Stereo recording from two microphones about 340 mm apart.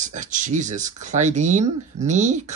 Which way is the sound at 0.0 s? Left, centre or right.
Right.